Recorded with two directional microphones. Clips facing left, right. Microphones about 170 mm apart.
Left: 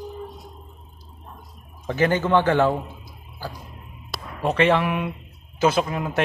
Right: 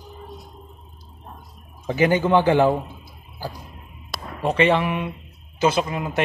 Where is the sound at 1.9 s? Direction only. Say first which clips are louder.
Right 2 dB; 10° right (ahead or behind).